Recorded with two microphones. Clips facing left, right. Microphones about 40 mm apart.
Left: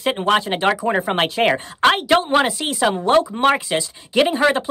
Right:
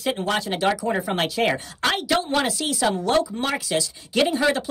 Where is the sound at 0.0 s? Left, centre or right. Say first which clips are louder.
Left 6 dB; left.